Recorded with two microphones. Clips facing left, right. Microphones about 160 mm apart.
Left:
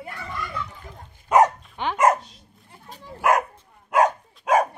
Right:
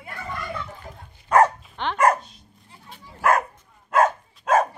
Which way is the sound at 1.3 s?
20° left (ahead or behind).